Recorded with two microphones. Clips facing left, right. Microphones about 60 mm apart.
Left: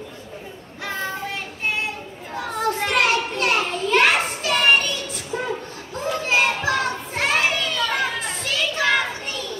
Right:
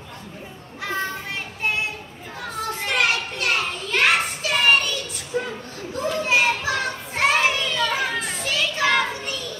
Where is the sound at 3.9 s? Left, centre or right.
Centre.